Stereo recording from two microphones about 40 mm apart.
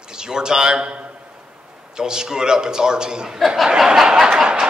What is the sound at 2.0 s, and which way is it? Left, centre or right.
A man's voice, centre.